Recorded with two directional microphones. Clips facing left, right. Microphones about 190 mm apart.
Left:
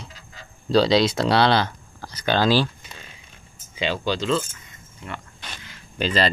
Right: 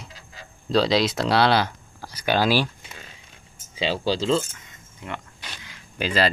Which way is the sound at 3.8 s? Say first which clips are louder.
Right 1 dB; 30° right (ahead or behind).